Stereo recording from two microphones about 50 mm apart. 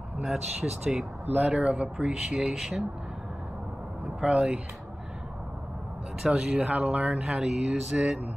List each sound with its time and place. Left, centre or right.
0.2 s speech: centre
1.5 s speech: right
4.2 s speech: centre
6.2 s speech: centre